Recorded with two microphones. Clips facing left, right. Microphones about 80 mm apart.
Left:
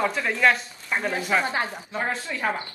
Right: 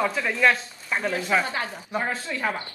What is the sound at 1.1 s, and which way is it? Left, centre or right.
Speech, centre.